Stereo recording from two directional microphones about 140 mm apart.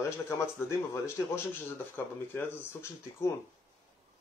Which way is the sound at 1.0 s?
20° left (ahead or behind).